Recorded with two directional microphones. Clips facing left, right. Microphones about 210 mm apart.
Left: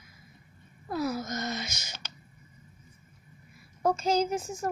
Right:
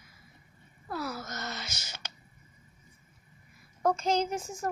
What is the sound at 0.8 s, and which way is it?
Speech, 15° left (ahead or behind).